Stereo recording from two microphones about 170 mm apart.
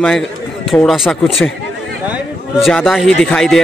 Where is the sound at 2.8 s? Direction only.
Centre (ahead or behind).